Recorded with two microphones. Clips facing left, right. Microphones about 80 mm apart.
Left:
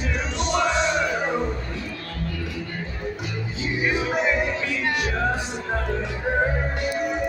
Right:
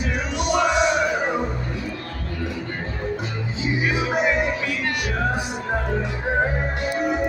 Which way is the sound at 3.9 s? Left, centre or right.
Centre.